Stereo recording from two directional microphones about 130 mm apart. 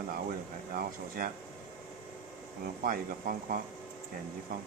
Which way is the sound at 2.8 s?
90° right.